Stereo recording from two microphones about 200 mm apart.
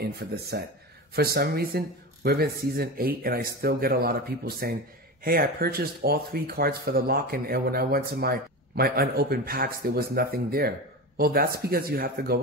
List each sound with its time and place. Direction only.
0.0 s speech: 50° right (ahead or behind)